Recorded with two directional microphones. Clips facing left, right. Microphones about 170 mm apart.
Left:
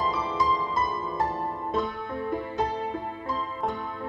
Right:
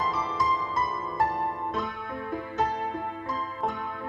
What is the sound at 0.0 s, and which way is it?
Music, 30° left (ahead or behind).